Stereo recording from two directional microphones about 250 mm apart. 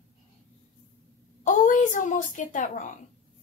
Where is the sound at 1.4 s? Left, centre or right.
Left.